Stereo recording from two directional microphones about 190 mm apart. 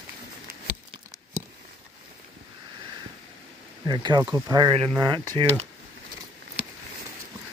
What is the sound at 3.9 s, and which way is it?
Speech, 25° right (ahead or behind).